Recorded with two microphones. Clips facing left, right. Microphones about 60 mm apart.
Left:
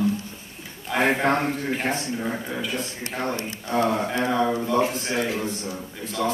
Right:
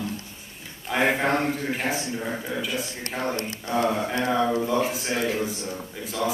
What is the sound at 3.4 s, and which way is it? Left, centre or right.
Speech, centre.